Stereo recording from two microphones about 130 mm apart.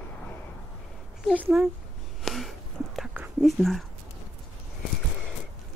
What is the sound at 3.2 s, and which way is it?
Whispering, centre (ahead or behind).